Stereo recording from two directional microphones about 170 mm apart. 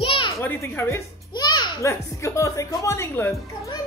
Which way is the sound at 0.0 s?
30° left (ahead or behind).